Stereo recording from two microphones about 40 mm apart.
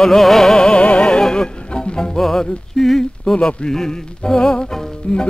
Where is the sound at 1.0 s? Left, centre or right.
Centre.